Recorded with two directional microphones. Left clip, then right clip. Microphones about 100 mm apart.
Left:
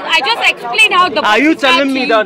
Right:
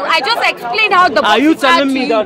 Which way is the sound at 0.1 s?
40° right (ahead or behind).